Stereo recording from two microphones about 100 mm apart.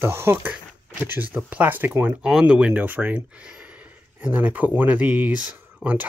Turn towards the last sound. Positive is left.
turn(degrees=-15)  # may be behind; listen again after turning